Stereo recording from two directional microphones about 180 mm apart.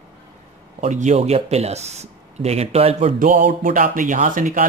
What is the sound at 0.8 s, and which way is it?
Speech, 40° right (ahead or behind).